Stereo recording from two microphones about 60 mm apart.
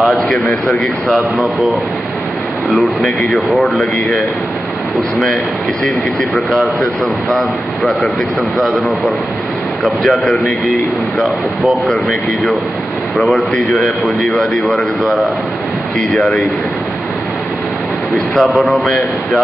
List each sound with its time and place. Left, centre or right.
0.5 s speech: left
2.7 s speech: centre
7.2 s speech: centre
13.7 s speech: centre
18.3 s speech: centre